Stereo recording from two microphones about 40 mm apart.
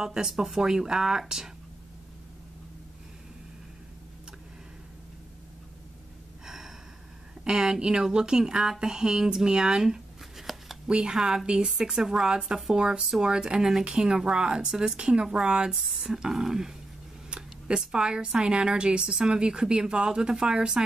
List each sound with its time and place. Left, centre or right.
0.0 s speech: centre
6.4 s gasp: centre
7.4 s speech: centre
9.8 s shuffling cards: centre
10.9 s speech: centre
14.7 s speech: centre
15.0 s speech: right
15.8 s speech: centre